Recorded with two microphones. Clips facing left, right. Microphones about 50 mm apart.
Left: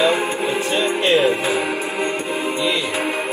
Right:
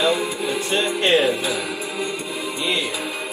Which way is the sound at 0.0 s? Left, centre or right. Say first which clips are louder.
Left 3 dB; left.